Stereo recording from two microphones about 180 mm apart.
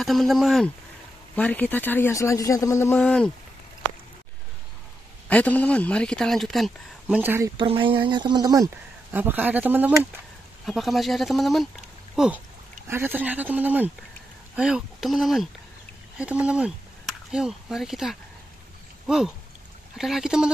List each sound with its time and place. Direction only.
0.0 s a woman's voice: centre (ahead or behind)
3.0 s a woman's voice: 5° left (ahead or behind)
5.3 s a woman's voice: 10° left (ahead or behind)
7.2 s speech: 15° right (ahead or behind)
7.5 s a woman's voice: 30° right (ahead or behind); by 12.3 s 5° right (ahead or behind)
12.8 s a woman's voice: 15° right (ahead or behind)